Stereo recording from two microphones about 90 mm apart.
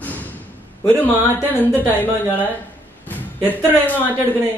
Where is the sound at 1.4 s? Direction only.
20° left (ahead or behind).